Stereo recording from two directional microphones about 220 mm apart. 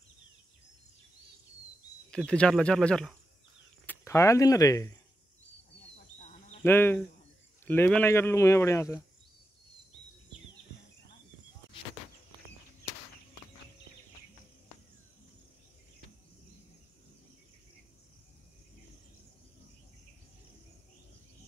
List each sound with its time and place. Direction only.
2.0 s speech: 5° left (ahead or behind)
5.9 s a sound: 35° left (ahead or behind)
6.6 s speech: 10° left (ahead or behind)